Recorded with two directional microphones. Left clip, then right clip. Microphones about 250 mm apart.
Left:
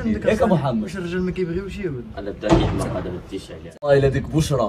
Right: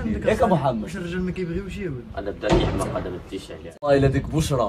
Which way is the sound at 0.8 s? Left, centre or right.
Centre.